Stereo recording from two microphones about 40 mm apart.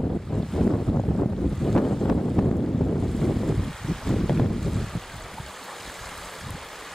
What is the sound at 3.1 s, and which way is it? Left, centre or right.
Boat, centre.